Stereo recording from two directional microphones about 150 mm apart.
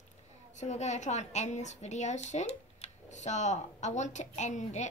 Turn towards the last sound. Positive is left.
turn(degrees=50)  # may be behind; listen again after turning